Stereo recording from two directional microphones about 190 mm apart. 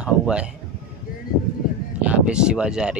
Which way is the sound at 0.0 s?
5° right (ahead or behind).